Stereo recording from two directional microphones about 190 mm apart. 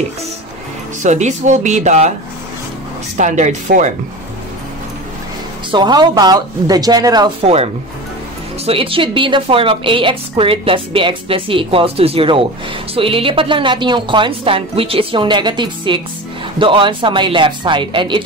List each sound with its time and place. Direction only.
1.0 s speech: 40° right (ahead or behind)
3.2 s speech: 40° right (ahead or behind)
5.7 s a woman's voice: 25° right (ahead or behind)
7.4 s a woman's voice: 30° right (ahead or behind)